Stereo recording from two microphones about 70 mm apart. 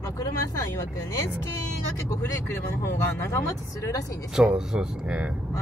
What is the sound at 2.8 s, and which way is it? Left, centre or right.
Speech, left.